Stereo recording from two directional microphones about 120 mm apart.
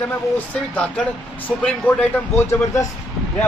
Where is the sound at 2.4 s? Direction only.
20° left (ahead or behind).